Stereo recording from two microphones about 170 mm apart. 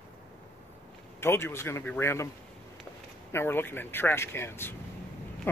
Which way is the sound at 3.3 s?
15° left (ahead or behind).